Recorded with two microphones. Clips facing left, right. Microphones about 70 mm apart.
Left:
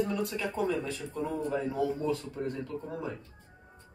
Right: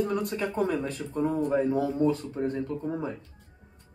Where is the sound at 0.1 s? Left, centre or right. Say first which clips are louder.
Right 3 dB; right.